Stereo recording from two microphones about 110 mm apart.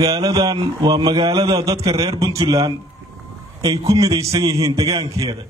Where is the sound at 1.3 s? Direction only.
35° right (ahead or behind).